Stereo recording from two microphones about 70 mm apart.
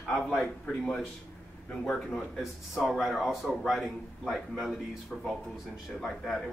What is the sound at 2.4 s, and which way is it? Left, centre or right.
Speech, centre.